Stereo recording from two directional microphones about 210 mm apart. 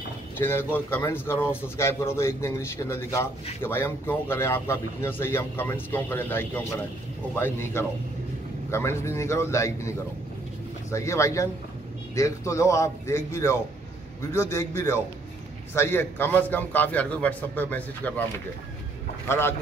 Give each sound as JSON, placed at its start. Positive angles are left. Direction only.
{"t": 0.4, "sound": "a man's voice", "side_deg": 10}
{"t": 19.2, "sound": "a man's voice", "side_deg": 10}